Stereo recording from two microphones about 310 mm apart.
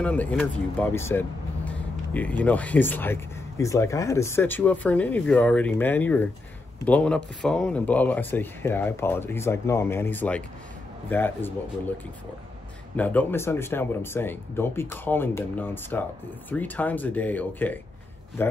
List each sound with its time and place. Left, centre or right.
0.0 s speech: centre
12.9 s speech: centre